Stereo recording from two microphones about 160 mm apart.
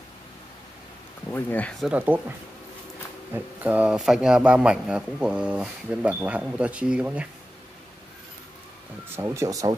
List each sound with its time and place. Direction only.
1.3 s speech: 10° left (ahead or behind)
1.9 s speech: 10° right (ahead or behind)
3.3 s speech: 10° right (ahead or behind)
9.1 s speech: 15° right (ahead or behind)